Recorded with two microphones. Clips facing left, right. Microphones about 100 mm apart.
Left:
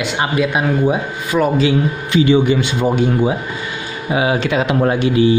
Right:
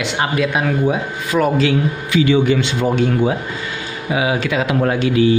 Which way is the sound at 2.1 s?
25° left (ahead or behind).